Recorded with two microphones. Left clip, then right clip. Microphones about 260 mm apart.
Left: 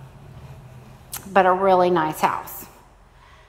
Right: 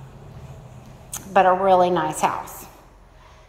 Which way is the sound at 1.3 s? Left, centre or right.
Left.